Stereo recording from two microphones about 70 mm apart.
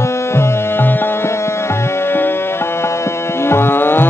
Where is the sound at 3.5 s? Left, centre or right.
Left.